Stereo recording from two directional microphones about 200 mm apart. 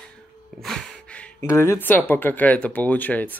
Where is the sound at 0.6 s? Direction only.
Centre (ahead or behind).